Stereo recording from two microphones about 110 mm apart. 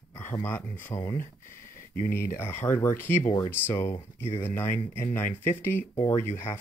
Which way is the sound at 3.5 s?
20° left (ahead or behind).